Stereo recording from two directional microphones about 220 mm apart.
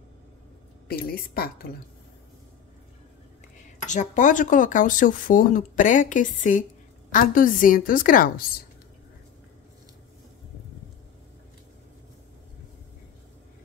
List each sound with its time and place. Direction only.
0.8 s a woman's voice: 45° left (ahead or behind)
3.8 s speech: 35° left (ahead or behind)